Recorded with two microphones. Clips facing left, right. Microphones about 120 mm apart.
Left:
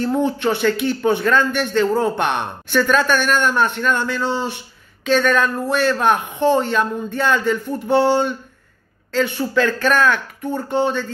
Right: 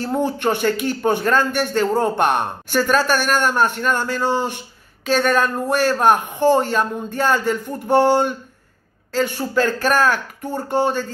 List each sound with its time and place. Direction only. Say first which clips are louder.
0.0 s speech: left 1 dB; 40° right (ahead or behind)